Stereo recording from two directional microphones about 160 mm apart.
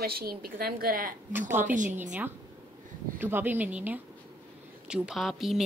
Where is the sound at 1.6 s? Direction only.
50° right (ahead or behind).